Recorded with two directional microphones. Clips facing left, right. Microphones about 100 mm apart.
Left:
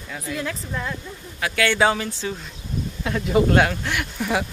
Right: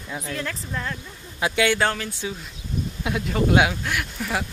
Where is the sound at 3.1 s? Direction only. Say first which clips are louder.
Left 3 dB; 15° right (ahead or behind); by 4.4 s centre (ahead or behind).